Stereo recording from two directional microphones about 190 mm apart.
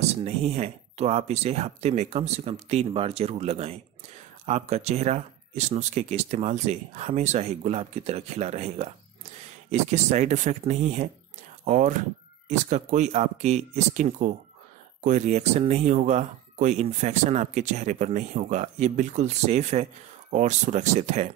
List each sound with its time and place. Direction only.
0.2 s speech: 35° right (ahead or behind)